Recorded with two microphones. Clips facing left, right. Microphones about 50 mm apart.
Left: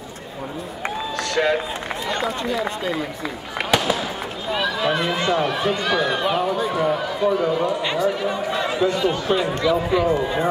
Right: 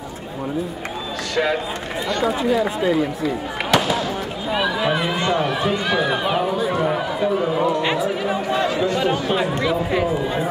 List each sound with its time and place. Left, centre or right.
1.3 s speech: centre
3.7 s fireworks: centre
4.5 s speech: centre